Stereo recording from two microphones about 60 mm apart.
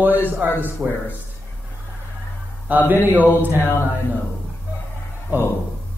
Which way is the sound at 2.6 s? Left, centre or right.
Right.